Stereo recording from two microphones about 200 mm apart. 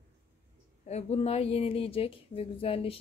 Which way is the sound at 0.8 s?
35° left (ahead or behind).